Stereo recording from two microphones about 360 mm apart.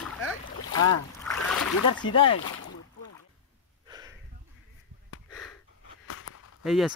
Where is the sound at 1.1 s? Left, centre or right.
Centre.